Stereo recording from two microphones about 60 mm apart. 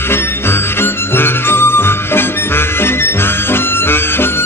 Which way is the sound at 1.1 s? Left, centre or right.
Left.